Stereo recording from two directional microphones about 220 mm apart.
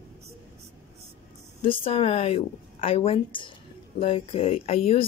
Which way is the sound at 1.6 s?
25° left (ahead or behind).